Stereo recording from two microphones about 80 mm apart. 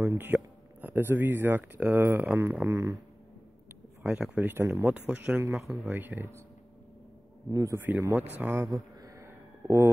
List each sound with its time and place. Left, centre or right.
0.0 s speech: right
2.7 s speech: right
4.0 s speech: centre
4.4 s speech: right
7.4 s a man's voice: right
8.1 s speech: right
8.7 s sheep: right